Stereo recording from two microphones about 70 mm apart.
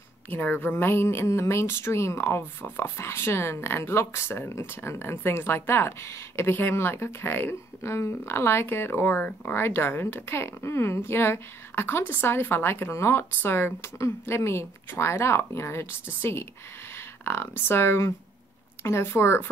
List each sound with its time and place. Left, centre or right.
0.3 s a woman's voice: left